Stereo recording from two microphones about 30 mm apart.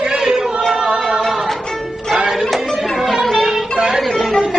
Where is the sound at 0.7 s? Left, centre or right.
Right.